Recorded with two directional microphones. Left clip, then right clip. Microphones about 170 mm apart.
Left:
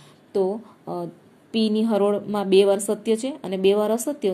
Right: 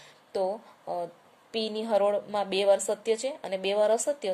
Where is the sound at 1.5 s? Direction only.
20° left (ahead or behind).